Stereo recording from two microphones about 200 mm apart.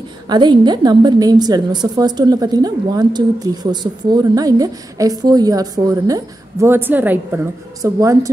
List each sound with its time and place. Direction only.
0.3 s a woman's voice: 20° right (ahead or behind)